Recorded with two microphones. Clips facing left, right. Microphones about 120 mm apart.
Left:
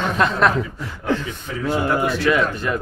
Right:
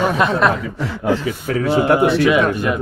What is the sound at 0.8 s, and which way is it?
Speech, 85° right.